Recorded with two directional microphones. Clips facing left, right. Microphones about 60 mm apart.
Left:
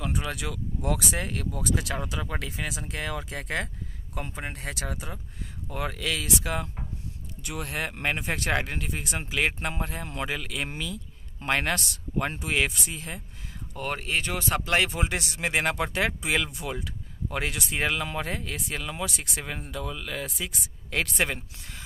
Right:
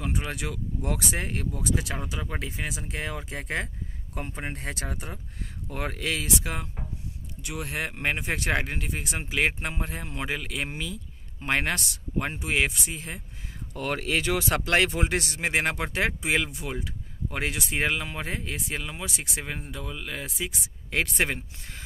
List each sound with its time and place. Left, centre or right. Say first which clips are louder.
0.0 s speech: even; right
4.1 s speech: right 1 dB; right
6.0 s speech: right 2 dB; right
6.4 s speech: left 3 dB; centre
13.7 s speech: right 2 dB; right
15.0 s speech: right 2 dB; right
18.0 s speech: left 2 dB; centre